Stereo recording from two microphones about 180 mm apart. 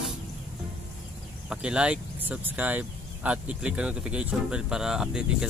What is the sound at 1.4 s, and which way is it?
Speech, 5° right (ahead or behind).